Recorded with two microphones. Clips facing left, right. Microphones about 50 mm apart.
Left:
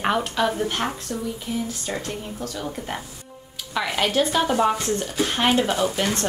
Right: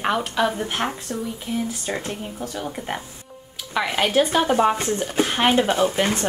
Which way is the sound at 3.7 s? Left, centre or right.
Centre.